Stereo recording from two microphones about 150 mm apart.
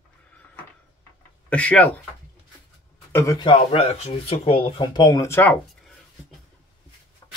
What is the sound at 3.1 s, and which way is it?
Speech, 15° left (ahead or behind).